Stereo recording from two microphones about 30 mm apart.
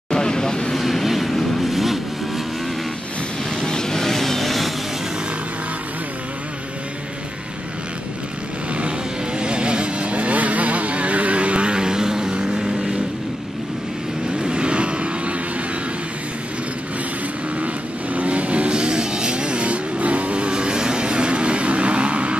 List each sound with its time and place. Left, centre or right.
0.1 s vehicle: left
0.7 s vehicle: centre
3.6 s vehicle: left; by 4.7 s centre
9.4 s vehicle: right
14.4 s vehicle: right
18.1 s vehicle: right
18.7 s vehicle: right